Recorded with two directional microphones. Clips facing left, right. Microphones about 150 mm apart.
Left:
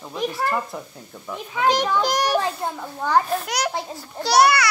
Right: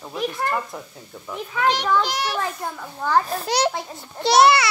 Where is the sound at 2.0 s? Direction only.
45° left (ahead or behind).